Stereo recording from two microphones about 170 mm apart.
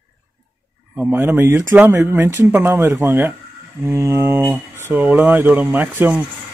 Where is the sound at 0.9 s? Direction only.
10° right (ahead or behind).